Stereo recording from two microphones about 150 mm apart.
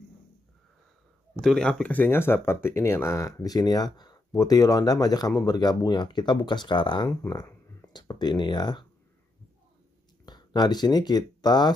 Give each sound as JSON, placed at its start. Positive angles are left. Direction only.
{"t": 1.4, "sound": "speech", "side_deg": 5}
{"t": 10.2, "sound": "speech", "side_deg": 30}